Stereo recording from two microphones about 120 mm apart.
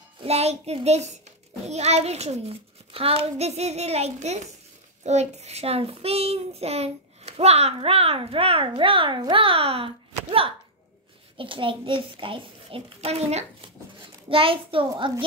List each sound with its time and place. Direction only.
0.2 s child singing: 60° right (ahead or behind)
0.8 s a child's voice: 70° right (ahead or behind)
1.7 s child singing: 65° right (ahead or behind); by 9.2 s 45° right (ahead or behind)
9.3 s a child's voice: 50° right (ahead or behind)
14.3 s a child's voice: 50° right (ahead or behind)